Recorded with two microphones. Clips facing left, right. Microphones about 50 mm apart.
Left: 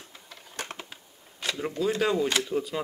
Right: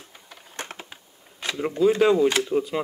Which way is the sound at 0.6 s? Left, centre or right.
Centre.